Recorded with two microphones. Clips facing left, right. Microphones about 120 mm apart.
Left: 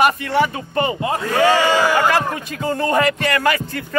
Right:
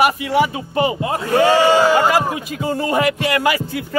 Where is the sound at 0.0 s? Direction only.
10° right (ahead or behind).